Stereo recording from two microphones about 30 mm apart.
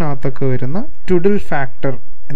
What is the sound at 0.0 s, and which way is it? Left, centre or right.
Speech, left.